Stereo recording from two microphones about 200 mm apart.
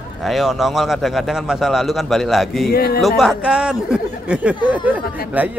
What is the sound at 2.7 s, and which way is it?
Speech, 50° left (ahead or behind).